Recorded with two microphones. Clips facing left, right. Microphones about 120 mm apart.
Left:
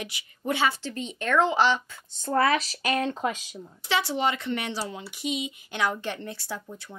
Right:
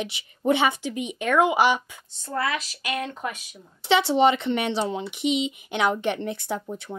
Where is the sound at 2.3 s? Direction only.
40° left (ahead or behind).